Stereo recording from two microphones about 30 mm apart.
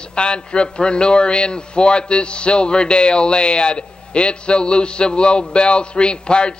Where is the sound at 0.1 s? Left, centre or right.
Left.